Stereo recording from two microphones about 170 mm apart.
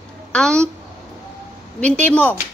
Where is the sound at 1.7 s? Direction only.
10° left (ahead or behind).